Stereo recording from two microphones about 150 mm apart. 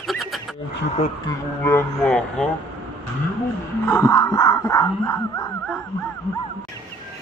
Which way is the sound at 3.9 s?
20° left (ahead or behind).